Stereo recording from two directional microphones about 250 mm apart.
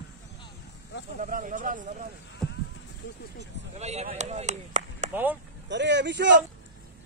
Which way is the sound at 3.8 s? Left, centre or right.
Right.